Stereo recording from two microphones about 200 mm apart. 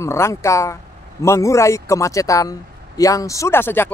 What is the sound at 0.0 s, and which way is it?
Speech, 15° left (ahead or behind).